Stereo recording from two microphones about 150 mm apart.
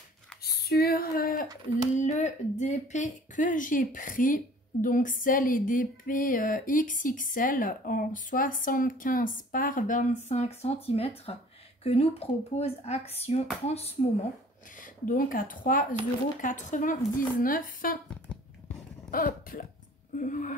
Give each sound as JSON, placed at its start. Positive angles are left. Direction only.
{"t": 0.4, "sound": "a sound", "side_deg": 90}
{"t": 2.0, "sound": "speech", "side_deg": 55}
{"t": 14.8, "sound": "speech", "side_deg": 70}
{"t": 19.0, "sound": "speech", "side_deg": 65}